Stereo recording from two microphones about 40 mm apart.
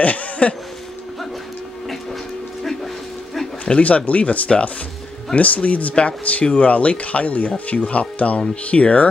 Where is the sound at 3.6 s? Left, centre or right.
Left.